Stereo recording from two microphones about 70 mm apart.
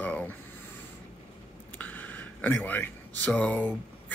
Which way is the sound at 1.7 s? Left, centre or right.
Left.